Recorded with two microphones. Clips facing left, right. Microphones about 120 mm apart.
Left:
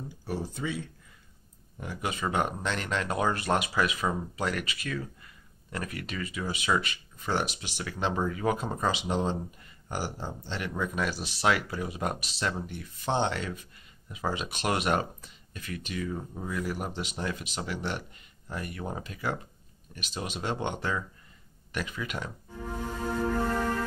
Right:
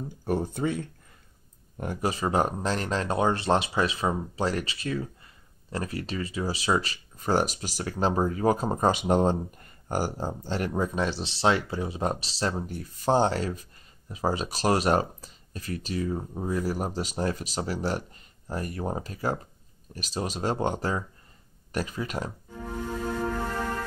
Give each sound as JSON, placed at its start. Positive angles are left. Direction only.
{"t": 0.2, "sound": "speech", "side_deg": -50}
{"t": 2.0, "sound": "speech", "side_deg": -35}